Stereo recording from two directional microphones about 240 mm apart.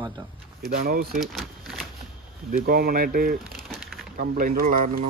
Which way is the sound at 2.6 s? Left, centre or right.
Right.